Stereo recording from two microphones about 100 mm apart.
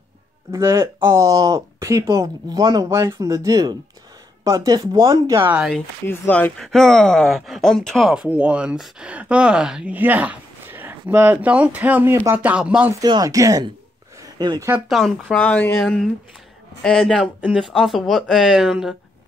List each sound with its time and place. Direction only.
0.5 s speech: 30° right (ahead or behind)
6.0 s speech: 20° left (ahead or behind)
6.6 s speech: 5° left (ahead or behind)
8.1 s speech: 10° right (ahead or behind)
13.0 s speech: 40° right (ahead or behind)
14.9 s speech: centre (ahead or behind)
15.4 s speech: 15° left (ahead or behind)
16.8 s speech: 5° left (ahead or behind)